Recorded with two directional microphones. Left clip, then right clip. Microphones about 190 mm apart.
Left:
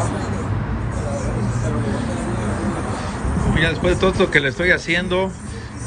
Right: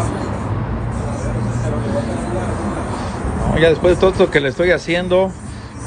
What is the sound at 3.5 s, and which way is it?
Speech, 30° right (ahead or behind).